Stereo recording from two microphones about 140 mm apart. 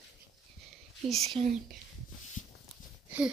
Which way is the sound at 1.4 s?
45° right (ahead or behind).